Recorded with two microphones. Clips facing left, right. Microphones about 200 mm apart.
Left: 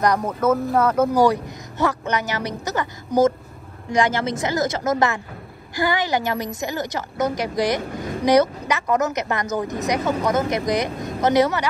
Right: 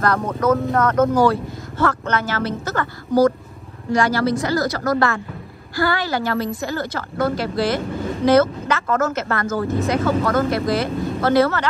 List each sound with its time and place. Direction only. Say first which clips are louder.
0.4 s speech: right 1 dB; 5° left (ahead or behind)